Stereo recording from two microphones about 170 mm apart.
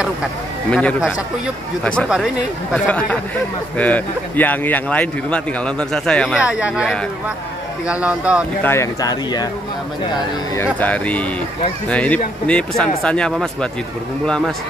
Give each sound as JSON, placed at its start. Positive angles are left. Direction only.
{"t": 0.7, "sound": "speech", "side_deg": 5}
{"t": 6.4, "sound": "speech", "side_deg": -5}
{"t": 8.6, "sound": "speech", "side_deg": 15}
{"t": 10.5, "sound": "speech", "side_deg": 10}